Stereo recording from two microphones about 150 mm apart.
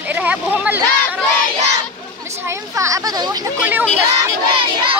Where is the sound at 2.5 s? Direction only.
20° right (ahead or behind).